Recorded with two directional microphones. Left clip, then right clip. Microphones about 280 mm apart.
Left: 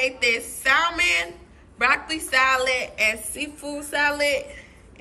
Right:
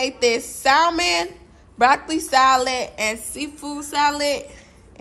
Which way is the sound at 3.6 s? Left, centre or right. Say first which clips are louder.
Right 1 dB; right.